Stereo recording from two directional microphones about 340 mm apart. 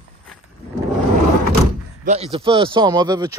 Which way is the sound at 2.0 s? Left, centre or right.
Centre.